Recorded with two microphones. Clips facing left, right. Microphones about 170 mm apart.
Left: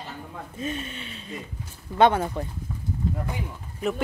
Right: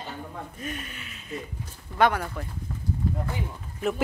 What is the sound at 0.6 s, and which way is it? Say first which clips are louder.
Speech: left 9 dB; 25° left (ahead or behind).